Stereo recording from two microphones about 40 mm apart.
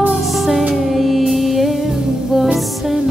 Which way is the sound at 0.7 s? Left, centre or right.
Centre.